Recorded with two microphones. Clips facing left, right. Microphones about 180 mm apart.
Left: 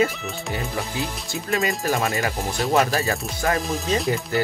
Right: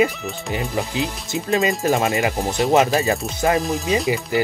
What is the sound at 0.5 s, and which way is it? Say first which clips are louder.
Speech: right 5 dB; 20° right (ahead or behind).